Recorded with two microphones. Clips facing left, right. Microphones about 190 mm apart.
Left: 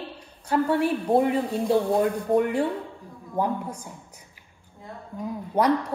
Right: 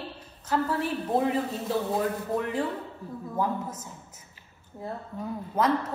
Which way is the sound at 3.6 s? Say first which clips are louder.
Left 3 dB; 5° right (ahead or behind).